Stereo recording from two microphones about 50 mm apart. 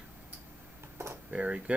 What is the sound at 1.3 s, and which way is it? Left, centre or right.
Speech, right.